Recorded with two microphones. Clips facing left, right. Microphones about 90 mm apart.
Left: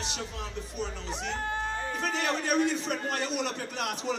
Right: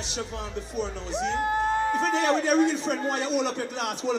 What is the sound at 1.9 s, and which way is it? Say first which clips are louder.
A man's voice: right 7 dB; 25° right (ahead or behind).